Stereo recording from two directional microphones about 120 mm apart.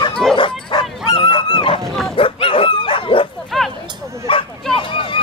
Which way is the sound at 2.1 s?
50° left (ahead or behind).